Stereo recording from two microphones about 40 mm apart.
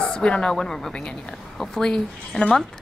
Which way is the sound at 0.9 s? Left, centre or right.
Left.